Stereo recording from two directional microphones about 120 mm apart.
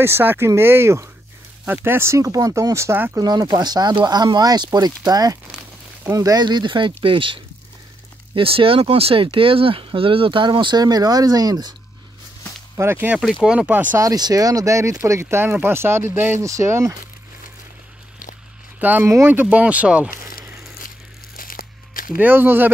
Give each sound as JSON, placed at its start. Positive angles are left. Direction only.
{"t": 0.0, "sound": "speech", "side_deg": -20}
{"t": 3.2, "sound": "speech", "side_deg": -35}
{"t": 12.7, "sound": "speech", "side_deg": -20}
{"t": 13.2, "sound": "speech", "side_deg": -5}
{"t": 13.9, "sound": "speech", "side_deg": -30}
{"t": 18.8, "sound": "speech", "side_deg": -15}
{"t": 22.2, "sound": "speech", "side_deg": -15}